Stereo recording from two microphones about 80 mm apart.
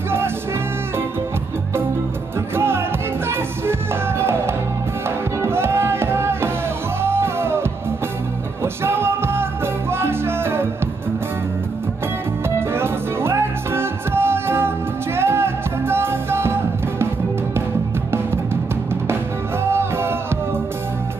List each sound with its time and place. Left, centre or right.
2.5 s music: right
8.8 s music: right
12.4 s music: right
18.1 s music: right
19.6 s music: right